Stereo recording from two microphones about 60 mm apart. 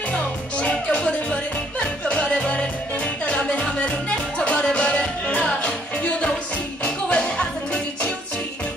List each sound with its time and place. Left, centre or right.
0.1 s music: left
6.8 s music: centre